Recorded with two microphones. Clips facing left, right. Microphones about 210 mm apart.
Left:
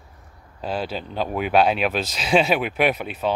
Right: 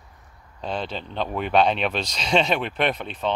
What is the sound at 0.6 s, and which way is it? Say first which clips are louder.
Speech: left 2 dB; 5° left (ahead or behind).